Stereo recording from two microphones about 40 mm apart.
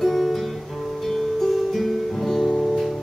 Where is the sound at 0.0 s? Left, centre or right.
Centre.